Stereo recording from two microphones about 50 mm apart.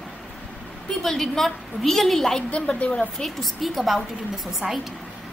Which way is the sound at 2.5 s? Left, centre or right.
Left.